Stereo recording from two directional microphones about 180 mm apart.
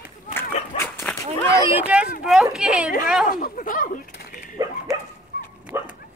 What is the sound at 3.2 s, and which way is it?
Speech, 50° left (ahead or behind).